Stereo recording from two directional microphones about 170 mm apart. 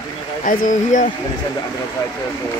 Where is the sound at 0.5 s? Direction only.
50° left (ahead or behind).